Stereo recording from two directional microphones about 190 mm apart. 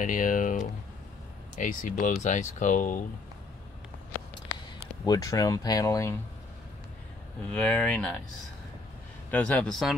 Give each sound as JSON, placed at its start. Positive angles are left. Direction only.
{"t": 0.0, "sound": "speech", "side_deg": 45}
{"t": 5.0, "sound": "speech", "side_deg": 20}
{"t": 7.5, "sound": "speech", "side_deg": 5}
{"t": 9.3, "sound": "speech", "side_deg": 5}